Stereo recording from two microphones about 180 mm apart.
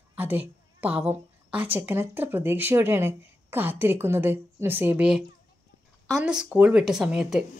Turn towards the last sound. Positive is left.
turn(degrees=-5)  # may be behind; listen again after turning